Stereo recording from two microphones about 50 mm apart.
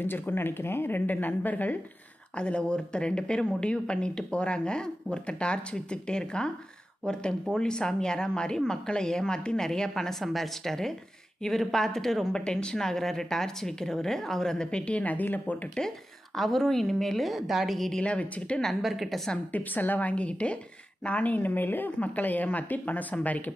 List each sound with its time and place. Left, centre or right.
0.0 s a woman's voice: left
2.3 s speech: left
7.5 s a woman's voice: centre
12.4 s a woman's voice: centre; by 15.5 s left
16.3 s a woman's voice: centre
17.9 s speech: left
18.8 s a woman's voice: centre
19.5 s a woman's voice: left